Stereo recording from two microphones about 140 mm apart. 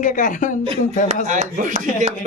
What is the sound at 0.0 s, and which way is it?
Speech, 70° left (ahead or behind).